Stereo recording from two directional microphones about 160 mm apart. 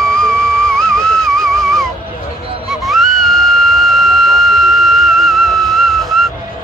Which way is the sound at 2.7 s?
Centre (ahead or behind).